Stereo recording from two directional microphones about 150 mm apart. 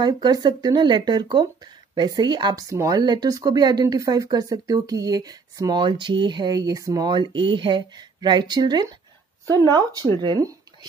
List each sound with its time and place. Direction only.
0.0 s speech: 30° right (ahead or behind)